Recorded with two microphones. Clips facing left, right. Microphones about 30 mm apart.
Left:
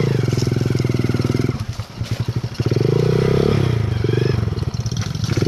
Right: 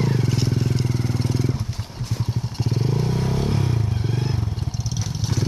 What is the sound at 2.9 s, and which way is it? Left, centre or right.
Vehicle, left.